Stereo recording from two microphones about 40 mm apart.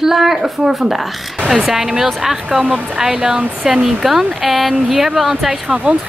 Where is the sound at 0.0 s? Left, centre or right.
Centre.